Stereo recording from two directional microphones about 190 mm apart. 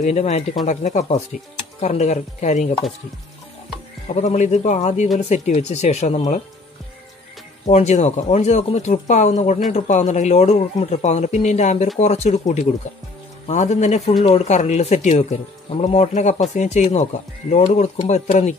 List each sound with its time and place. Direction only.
0.0 s speech: 35° left (ahead or behind)
4.1 s speech: 35° left (ahead or behind)
7.6 s speech: 35° left (ahead or behind)